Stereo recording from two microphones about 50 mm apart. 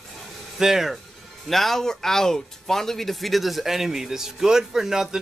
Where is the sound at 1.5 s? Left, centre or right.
Centre.